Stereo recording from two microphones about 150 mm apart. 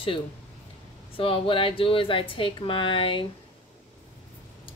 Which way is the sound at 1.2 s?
35° left (ahead or behind).